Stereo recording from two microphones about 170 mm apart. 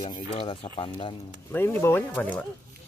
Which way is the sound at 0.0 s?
35° left (ahead or behind).